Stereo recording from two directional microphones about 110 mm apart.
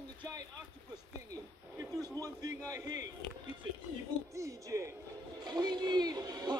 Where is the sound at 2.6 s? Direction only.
30° right (ahead or behind).